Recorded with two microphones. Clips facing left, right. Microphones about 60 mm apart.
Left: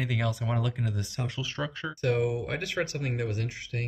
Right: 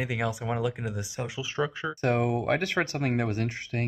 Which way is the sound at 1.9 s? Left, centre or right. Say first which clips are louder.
Even; right.